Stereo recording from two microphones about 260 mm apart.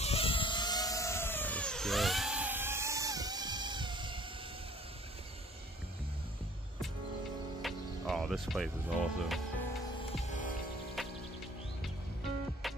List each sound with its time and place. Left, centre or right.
0.0 s vehicle: left; by 4.2 s centre
7.6 s music: centre
10.2 s music: left
12.6 s music: centre